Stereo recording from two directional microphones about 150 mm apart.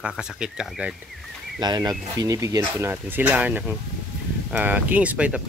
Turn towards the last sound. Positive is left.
turn(degrees=-10)  # may be behind; listen again after turning